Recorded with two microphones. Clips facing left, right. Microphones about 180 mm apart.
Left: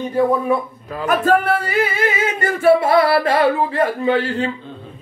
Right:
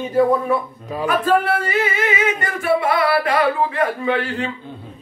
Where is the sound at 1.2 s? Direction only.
40° left (ahead or behind).